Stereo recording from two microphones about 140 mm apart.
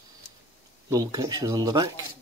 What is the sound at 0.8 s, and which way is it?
Speech, 25° right (ahead or behind).